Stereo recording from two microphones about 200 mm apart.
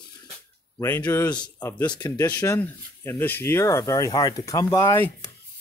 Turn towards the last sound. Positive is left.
turn(degrees=15)  # may be behind; listen again after turning